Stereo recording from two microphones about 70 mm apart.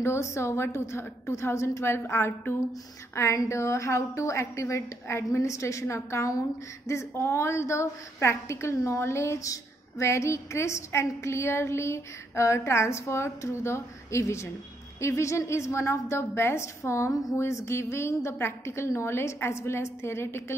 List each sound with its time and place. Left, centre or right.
0.0 s a woman's voice: left